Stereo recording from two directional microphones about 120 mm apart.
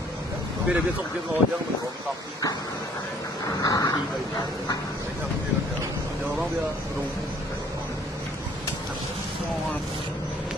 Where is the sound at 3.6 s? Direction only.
30° left (ahead or behind).